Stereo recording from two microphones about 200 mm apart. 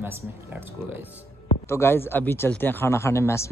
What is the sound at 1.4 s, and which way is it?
Speech, 15° left (ahead or behind).